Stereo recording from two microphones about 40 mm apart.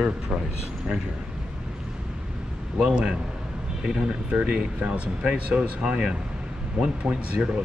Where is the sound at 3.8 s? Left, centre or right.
Right.